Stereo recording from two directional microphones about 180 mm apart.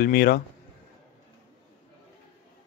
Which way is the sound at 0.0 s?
55° left (ahead or behind).